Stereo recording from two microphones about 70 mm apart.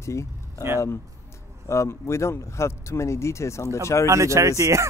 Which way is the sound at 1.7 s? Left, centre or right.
Left.